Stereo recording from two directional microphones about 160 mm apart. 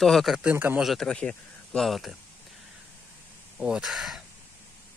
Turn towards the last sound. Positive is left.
turn(degrees=0)  # may be behind; listen again after turning